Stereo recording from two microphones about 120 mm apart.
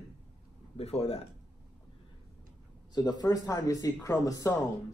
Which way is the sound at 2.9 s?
30° left (ahead or behind).